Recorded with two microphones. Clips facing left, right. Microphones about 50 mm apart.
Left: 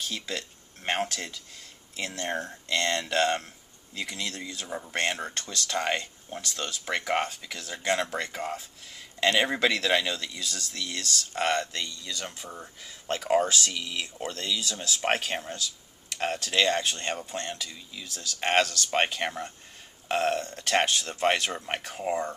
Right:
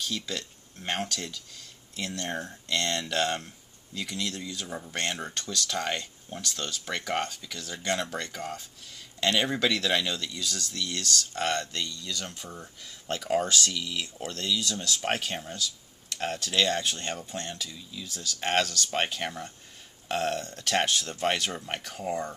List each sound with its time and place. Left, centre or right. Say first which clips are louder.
0.1 s speech: even; centre